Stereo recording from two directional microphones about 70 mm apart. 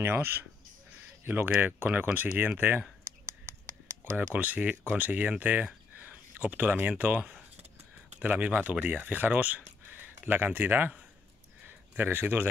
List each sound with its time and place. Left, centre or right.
0.0 s speech: right
4.0 s speech: right
12.0 s speech: right